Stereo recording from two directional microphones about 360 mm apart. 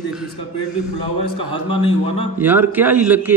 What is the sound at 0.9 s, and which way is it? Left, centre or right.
Speech, left.